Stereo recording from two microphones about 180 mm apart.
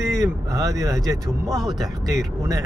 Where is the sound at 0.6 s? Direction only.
20° right (ahead or behind).